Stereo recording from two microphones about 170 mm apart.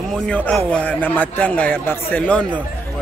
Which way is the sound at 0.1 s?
5° left (ahead or behind).